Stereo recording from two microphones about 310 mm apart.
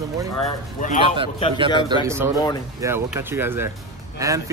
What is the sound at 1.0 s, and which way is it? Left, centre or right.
Speech, centre.